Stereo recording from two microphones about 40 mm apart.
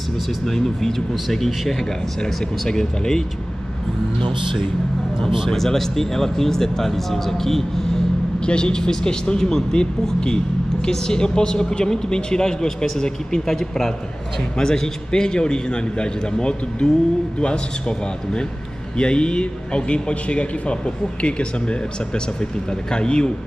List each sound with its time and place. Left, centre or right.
0.5 s a man's voice: centre
5.5 s a man's voice: centre
8.4 s a man's voice: left